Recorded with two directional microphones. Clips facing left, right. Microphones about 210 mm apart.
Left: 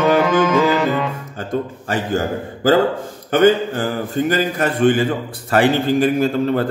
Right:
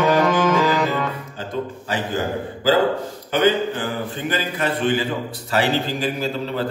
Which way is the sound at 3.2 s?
50° left (ahead or behind).